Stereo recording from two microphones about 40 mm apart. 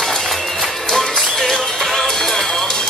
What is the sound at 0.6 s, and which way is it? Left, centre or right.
Music, centre.